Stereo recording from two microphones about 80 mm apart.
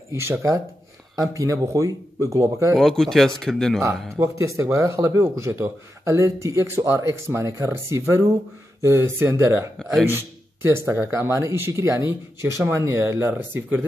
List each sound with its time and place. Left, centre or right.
0.1 s speech: right
2.7 s speech: centre
4.2 s speech: right
9.8 s speech: centre
10.1 s speech: right
11.1 s speech: right